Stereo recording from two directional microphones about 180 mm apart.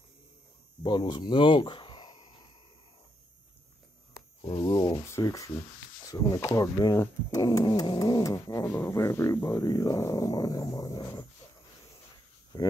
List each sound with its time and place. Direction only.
0.8 s speech: 25° left (ahead or behind)
4.4 s a sound: 25° left (ahead or behind)
6.0 s speech: 15° left (ahead or behind)
12.5 s speech: 20° left (ahead or behind)